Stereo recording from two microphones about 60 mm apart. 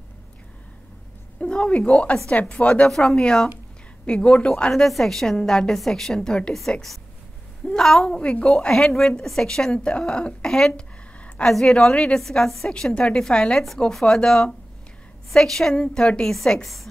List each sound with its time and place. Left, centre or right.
1.4 s a woman's voice: centre
10.7 s a sound: left
11.4 s a woman's voice: centre